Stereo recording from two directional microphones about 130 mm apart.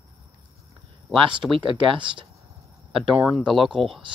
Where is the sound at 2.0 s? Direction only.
40° right (ahead or behind).